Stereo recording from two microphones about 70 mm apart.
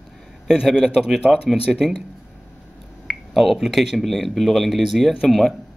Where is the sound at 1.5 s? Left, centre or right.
Centre.